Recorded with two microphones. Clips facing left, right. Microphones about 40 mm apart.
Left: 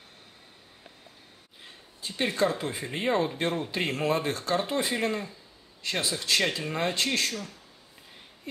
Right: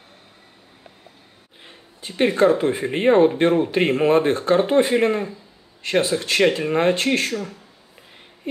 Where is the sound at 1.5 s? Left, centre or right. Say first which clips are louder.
Right 4 dB; right.